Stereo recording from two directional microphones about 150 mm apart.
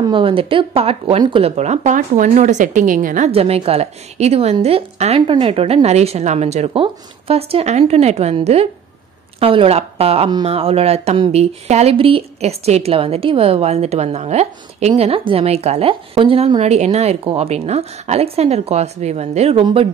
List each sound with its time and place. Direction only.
0.0 s speech: 35° right (ahead or behind)
1.6 s a woman's voice: 50° right (ahead or behind)
3.3 s speech: 40° right (ahead or behind)